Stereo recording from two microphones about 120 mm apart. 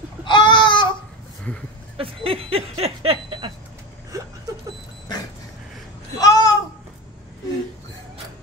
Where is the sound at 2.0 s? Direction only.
50° right (ahead or behind).